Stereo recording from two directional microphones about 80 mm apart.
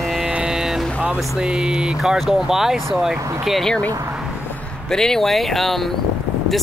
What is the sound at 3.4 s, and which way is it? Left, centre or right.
Speech, centre.